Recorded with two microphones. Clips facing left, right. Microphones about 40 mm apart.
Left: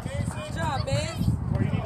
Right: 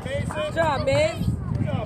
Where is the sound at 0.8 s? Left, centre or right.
Right.